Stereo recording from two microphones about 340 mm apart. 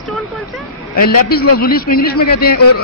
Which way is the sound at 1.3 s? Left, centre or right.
Left.